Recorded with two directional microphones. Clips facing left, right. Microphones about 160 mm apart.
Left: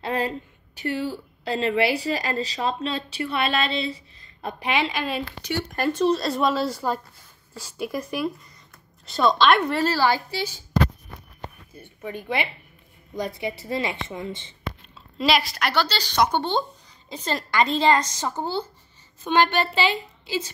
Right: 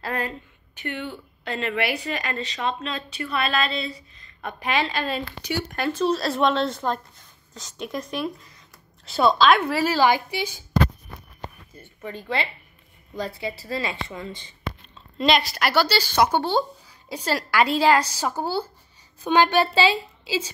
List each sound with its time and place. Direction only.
0.0 s a woman's voice: 25° left (ahead or behind)
4.9 s speech: 5° left (ahead or behind)
9.9 s speech: 15° right (ahead or behind)
11.7 s a woman's voice: 10° left (ahead or behind)
15.1 s speech: centre (ahead or behind)